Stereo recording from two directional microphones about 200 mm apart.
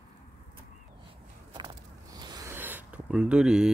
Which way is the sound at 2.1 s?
20° right (ahead or behind).